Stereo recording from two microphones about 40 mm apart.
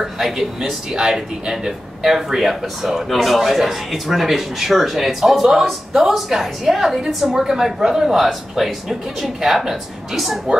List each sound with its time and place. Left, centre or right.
0.0 s speech: centre